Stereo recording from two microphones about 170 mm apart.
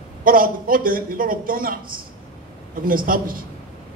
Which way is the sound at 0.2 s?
55° right (ahead or behind).